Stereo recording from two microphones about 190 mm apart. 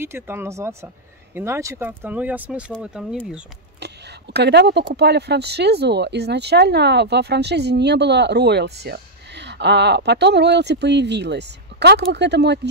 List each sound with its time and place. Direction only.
0.0 s speech: 15° right (ahead or behind)
3.8 s speech: 60° right (ahead or behind)